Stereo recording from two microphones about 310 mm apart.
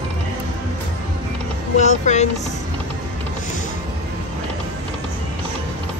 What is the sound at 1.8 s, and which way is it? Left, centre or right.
Speech, left.